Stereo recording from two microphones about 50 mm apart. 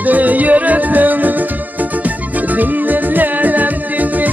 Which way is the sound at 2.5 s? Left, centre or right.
Right.